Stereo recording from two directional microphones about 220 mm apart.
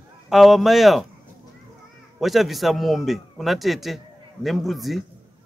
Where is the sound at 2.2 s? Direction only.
Centre (ahead or behind).